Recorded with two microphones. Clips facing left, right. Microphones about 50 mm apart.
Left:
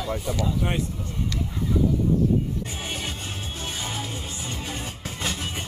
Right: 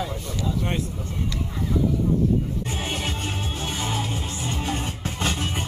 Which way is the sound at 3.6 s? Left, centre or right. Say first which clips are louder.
Right 3 dB; centre.